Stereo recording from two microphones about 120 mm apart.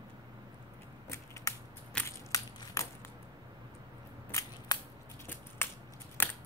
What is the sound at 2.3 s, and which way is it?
Crushing, 30° left (ahead or behind).